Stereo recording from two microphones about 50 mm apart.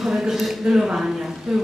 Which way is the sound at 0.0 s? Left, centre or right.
Centre.